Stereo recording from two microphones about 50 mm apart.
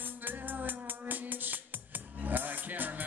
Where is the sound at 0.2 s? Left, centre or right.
Right.